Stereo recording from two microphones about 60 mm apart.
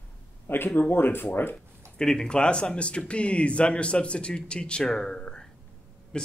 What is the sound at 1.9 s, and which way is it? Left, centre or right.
Speech, centre.